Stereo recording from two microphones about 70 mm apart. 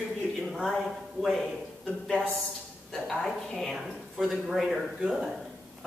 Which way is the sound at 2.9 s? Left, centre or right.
Centre.